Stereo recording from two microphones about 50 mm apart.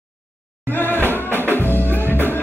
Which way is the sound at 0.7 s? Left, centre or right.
Left.